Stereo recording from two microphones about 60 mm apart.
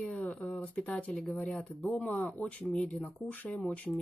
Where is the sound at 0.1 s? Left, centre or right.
Left.